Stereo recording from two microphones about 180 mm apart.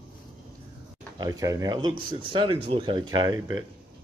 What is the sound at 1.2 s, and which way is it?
Speech, 20° right (ahead or behind).